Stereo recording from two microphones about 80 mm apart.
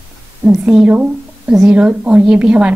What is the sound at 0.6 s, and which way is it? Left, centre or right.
A woman's voice, centre.